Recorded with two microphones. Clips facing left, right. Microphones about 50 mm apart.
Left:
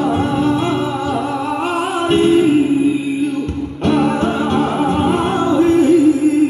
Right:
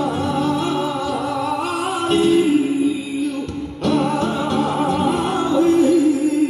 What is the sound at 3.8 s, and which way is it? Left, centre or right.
Music, left.